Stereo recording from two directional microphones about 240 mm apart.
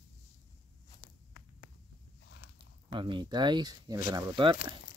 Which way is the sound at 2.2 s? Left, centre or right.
Left.